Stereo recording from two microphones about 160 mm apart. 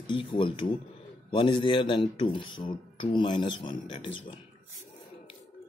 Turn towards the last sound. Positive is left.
turn(degrees=30)  # may be behind; listen again after turning